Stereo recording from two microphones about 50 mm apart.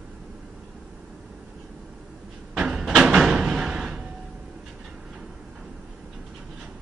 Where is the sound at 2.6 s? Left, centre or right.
Centre.